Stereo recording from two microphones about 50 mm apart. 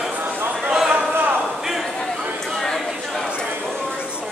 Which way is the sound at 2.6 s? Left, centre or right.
Centre.